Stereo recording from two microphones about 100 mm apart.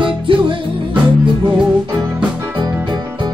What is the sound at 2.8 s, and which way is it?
Music, 45° right (ahead or behind).